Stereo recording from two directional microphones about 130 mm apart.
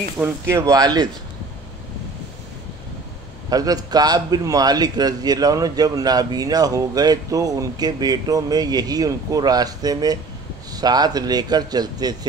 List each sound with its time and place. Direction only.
0.2 s a man's voice: 20° right (ahead or behind)
3.4 s a man's voice: 30° right (ahead or behind)